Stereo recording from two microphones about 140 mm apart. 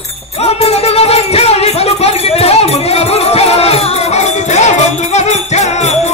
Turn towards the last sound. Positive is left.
turn(degrees=55)  # may be behind; listen again after turning